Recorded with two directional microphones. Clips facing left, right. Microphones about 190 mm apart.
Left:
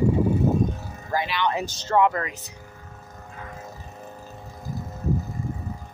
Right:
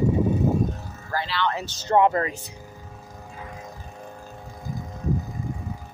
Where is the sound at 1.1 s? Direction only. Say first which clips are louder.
Left 2 dB; 15° left (ahead or behind).